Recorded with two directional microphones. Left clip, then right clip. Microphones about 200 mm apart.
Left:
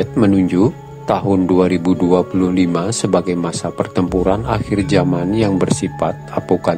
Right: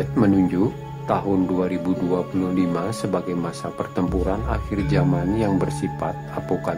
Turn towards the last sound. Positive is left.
turn(degrees=25)  # may be behind; listen again after turning